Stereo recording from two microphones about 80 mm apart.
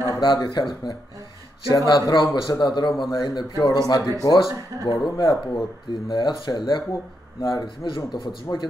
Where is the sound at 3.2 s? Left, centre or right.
Left.